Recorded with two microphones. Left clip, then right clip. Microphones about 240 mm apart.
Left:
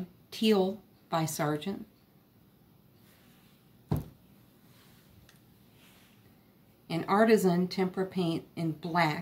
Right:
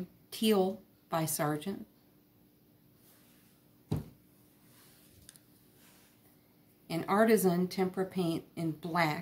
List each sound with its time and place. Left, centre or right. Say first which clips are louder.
0.3 s a woman's voice: left 2 dB; centre
6.9 s a woman's voice: left 3 dB; centre